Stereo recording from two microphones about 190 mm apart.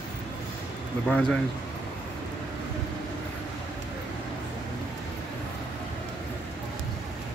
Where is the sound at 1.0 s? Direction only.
5° left (ahead or behind).